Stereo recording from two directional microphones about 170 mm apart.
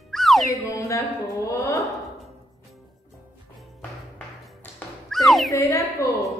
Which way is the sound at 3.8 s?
10° left (ahead or behind).